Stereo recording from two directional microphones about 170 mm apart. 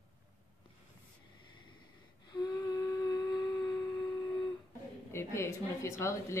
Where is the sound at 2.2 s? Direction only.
25° left (ahead or behind).